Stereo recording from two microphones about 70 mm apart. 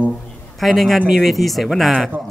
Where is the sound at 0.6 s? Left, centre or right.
Centre.